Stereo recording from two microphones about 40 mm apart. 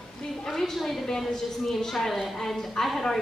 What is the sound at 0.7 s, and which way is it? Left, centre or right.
A woman's voice, centre.